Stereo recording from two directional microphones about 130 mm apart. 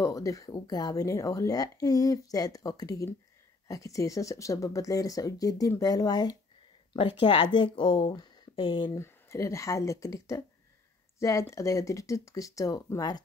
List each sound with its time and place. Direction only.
0.0 s speech: 25° left (ahead or behind)
6.9 s speech: 40° left (ahead or behind)
8.9 s speech: 20° left (ahead or behind)